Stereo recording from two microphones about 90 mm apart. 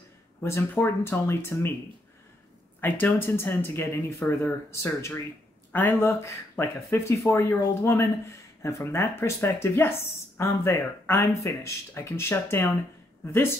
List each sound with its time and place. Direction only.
0.4 s speech: 30° left (ahead or behind)
2.8 s speech: 25° left (ahead or behind)